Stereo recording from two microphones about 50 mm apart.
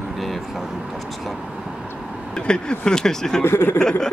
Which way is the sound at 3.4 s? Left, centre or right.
Left.